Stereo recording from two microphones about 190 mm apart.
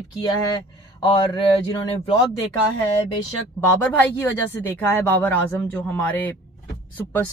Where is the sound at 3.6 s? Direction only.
5° left (ahead or behind).